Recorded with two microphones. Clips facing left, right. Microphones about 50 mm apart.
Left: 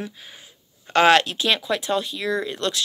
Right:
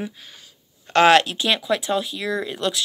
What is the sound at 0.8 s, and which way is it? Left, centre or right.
Speech, centre.